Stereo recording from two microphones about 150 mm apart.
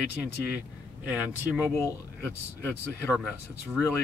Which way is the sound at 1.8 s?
15° left (ahead or behind).